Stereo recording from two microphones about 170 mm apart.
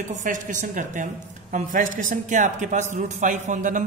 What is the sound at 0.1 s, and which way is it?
A woman's voice, 50° right (ahead or behind).